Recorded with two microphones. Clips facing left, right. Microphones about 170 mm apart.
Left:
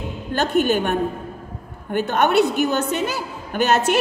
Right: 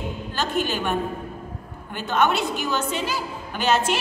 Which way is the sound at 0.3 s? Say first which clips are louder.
Left 7 dB; 55° left (ahead or behind).